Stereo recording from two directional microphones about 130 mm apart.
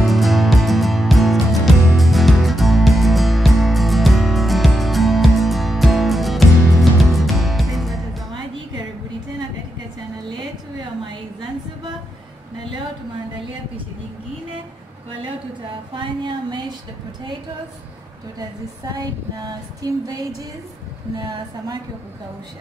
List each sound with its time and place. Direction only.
0.0 s music: centre (ahead or behind)
15.9 s a sound: 35° right (ahead or behind)
18.4 s female singing: 30° right (ahead or behind)